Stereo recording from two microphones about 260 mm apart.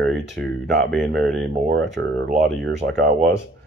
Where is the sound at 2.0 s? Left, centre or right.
Right.